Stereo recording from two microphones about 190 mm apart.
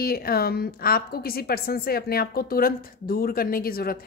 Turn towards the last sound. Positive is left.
turn(degrees=55)  # may be behind; listen again after turning